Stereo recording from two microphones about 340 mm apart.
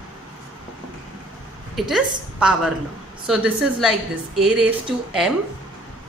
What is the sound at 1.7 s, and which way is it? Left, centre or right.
A woman's voice, centre.